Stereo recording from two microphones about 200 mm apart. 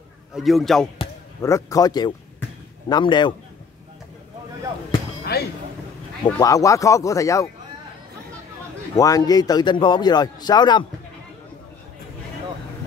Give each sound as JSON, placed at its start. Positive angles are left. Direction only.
{"t": 0.3, "sound": "a man's voice", "side_deg": 0}
{"t": 1.4, "sound": "a man's voice", "side_deg": 15}
{"t": 5.3, "sound": "a sound", "side_deg": 55}
{"t": 6.4, "sound": "speech", "side_deg": 15}
{"t": 8.9, "sound": "a man's voice", "side_deg": 20}